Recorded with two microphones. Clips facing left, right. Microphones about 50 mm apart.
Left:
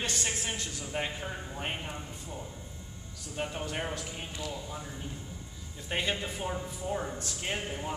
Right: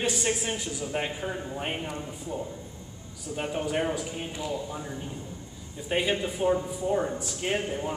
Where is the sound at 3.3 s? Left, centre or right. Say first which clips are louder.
Right 6 dB; centre.